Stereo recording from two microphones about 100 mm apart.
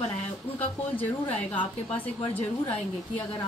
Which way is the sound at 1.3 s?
15° left (ahead or behind).